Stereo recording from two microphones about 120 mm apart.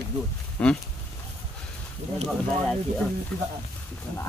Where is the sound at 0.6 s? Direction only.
10° left (ahead or behind).